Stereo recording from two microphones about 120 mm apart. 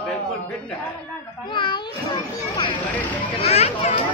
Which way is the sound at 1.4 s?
40° left (ahead or behind).